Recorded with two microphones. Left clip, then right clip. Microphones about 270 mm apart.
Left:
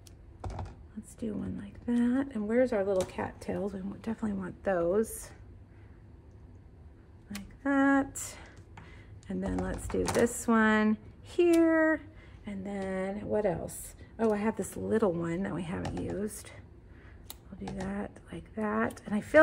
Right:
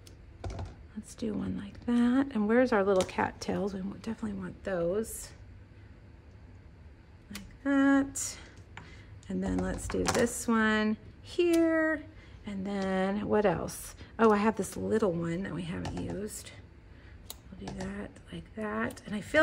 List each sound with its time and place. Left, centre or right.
1.1 s speech: centre
3.6 s speech: centre
4.7 s a woman's voice: centre
7.2 s speech: centre
12.7 s speech: centre
14.5 s speech: centre
17.3 s speech: centre